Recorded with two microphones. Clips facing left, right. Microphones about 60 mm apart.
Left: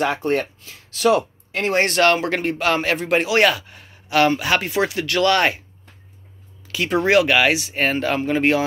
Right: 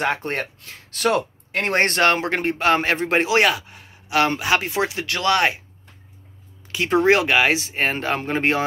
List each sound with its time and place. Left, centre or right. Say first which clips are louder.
0.0 s speech: left 3 dB; right
0.7 s speech: left 4 dB; right
2.0 s speech: left 2 dB; right
6.7 s speech: even; right
8.3 s speech: left 3 dB; right